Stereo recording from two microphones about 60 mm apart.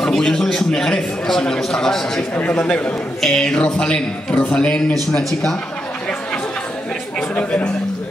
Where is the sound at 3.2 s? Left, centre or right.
Centre.